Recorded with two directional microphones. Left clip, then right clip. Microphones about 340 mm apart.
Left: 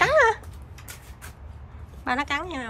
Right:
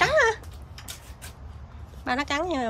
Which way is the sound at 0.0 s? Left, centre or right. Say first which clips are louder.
Left 2 dB; centre.